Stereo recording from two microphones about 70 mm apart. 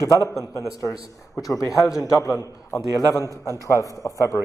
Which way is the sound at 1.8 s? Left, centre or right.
Centre.